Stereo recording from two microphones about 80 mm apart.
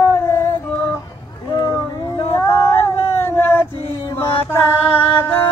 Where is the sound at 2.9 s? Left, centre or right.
Left.